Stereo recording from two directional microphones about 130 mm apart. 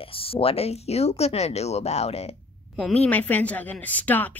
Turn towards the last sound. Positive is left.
turn(degrees=15)  # may be behind; listen again after turning